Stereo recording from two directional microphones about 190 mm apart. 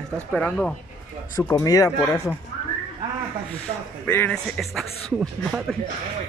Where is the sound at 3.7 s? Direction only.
35° right (ahead or behind).